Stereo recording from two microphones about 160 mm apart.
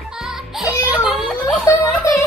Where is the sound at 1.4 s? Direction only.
15° left (ahead or behind).